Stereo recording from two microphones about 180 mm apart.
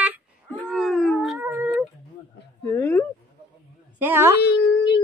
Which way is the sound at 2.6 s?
15° left (ahead or behind).